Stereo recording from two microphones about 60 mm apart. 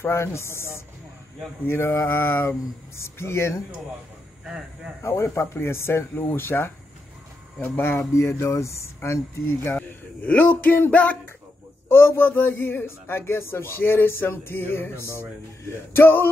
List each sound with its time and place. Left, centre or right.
0.0 s speech: left
5.0 s speech: left
8.1 s speech: left
9.8 s speech: left
11.9 s speech: left